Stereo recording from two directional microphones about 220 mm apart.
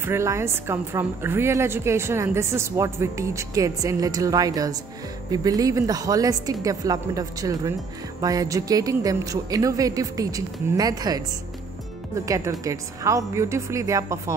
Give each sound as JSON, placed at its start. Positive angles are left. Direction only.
{"t": 0.0, "sound": "a woman's voice", "side_deg": -10}
{"t": 12.3, "sound": "a woman's voice", "side_deg": -15}